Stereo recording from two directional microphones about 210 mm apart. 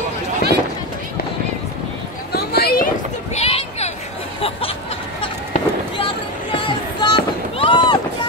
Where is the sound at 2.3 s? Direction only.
45° left (ahead or behind).